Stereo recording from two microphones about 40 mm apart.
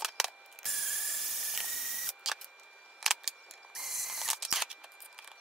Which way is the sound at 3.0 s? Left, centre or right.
Centre.